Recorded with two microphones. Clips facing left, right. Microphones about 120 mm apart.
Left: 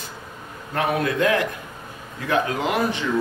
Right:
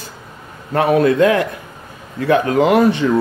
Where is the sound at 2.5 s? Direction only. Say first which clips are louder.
Right 10 dB; 60° right (ahead or behind).